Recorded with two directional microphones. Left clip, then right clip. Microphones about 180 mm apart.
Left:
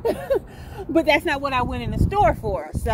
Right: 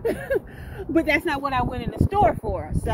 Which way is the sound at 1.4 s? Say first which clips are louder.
Left 1 dB; centre (ahead or behind).